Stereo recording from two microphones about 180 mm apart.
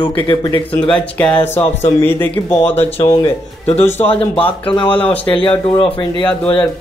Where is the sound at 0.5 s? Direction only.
5° left (ahead or behind).